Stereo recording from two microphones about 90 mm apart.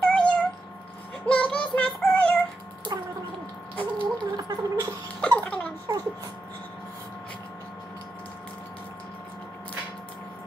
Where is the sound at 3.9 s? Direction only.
50° right (ahead or behind).